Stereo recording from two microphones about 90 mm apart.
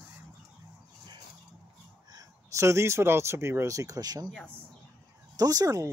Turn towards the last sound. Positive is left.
turn(degrees=-40)  # may be behind; listen again after turning